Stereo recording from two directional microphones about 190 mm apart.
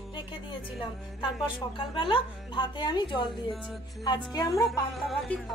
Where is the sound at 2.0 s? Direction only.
25° left (ahead or behind).